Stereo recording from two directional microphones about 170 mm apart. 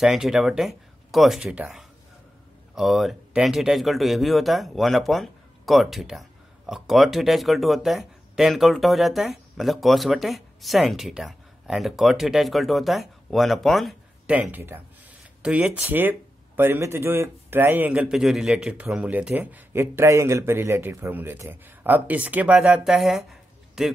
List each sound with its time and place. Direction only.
0.0 s speech: centre (ahead or behind)